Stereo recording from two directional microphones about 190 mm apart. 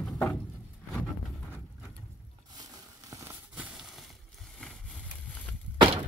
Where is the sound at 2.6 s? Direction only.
20° right (ahead or behind).